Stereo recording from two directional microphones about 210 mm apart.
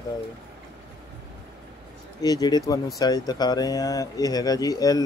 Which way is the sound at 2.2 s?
20° left (ahead or behind).